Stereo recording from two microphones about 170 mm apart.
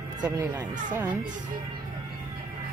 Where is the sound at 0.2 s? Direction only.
25° right (ahead or behind).